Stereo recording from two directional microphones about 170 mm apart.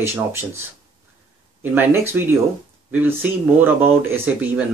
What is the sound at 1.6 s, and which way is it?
Speech, 10° right (ahead or behind).